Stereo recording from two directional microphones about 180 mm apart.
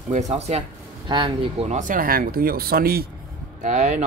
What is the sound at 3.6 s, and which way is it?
Speech, 40° right (ahead or behind).